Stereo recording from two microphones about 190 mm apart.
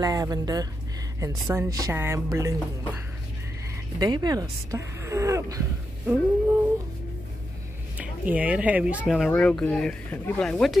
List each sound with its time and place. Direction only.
0.0 s speech: 20° right (ahead or behind)
8.0 s speech: 10° right (ahead or behind)